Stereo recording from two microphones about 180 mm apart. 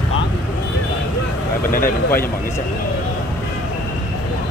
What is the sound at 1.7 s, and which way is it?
Speech, 50° left (ahead or behind).